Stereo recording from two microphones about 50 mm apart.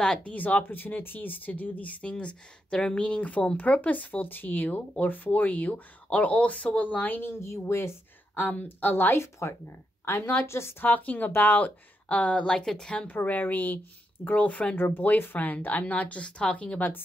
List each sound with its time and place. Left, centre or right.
0.0 s speech: centre
0.3 s speech: left
7.4 s speech: left
8.4 s speech: left
8.8 s speech: left
9.2 s speech: left
10.1 s a woman's voice: left
10.8 s speech: left
12.4 s speech: centre
13.0 s speech: left
14.8 s speech: left